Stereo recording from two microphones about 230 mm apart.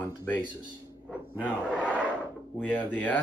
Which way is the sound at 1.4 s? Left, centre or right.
Centre.